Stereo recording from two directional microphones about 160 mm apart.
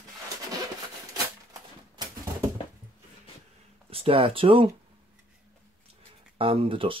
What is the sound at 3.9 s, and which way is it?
Speech, 35° right (ahead or behind).